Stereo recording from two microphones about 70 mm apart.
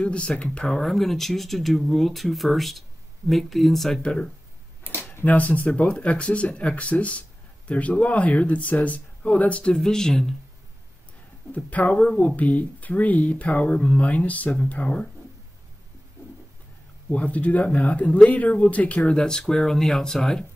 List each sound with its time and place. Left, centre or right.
0.0 s speech: centre
11.5 s speech: left
17.1 s speech: left